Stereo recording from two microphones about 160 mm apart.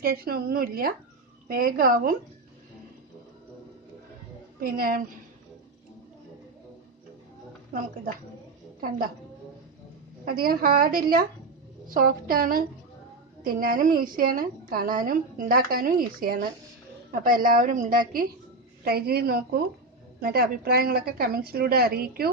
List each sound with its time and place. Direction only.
0.0 s a woman's voice: 70° right (ahead or behind)
4.6 s a woman's voice: 65° right (ahead or behind)
10.2 s a woman's voice: 65° right (ahead or behind)
18.9 s a woman's voice: 75° right (ahead or behind)